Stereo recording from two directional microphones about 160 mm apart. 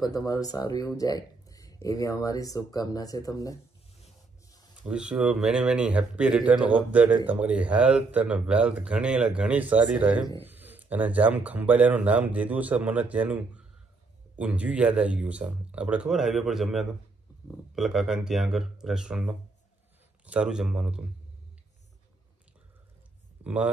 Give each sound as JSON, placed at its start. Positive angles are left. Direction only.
{"t": 0.0, "sound": "speech", "side_deg": 25}
{"t": 4.8, "sound": "speech", "side_deg": -5}
{"t": 23.4, "sound": "speech", "side_deg": -10}